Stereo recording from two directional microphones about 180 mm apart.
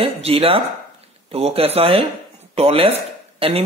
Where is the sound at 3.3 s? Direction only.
30° right (ahead or behind).